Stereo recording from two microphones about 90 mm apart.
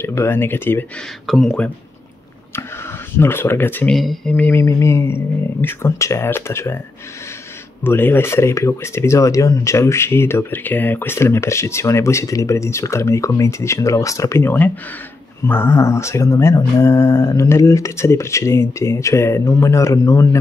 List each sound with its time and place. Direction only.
0.0 s speech: 25° left (ahead or behind)
1.2 s speech: 5° left (ahead or behind)
2.5 s a sound: 25° left (ahead or behind)
3.9 s speech: centre (ahead or behind)
4.3 s mantra: 15° left (ahead or behind)
4.6 s speech: 30° left (ahead or behind)
7.8 s speech: 25° left (ahead or behind)